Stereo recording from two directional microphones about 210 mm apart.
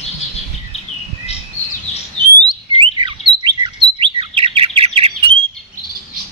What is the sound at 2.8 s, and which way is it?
Bird, 25° right (ahead or behind).